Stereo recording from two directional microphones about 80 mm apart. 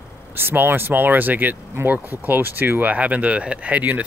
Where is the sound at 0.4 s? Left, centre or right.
Right.